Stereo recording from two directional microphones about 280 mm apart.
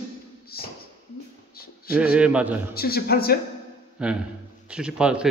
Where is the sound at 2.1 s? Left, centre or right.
Centre.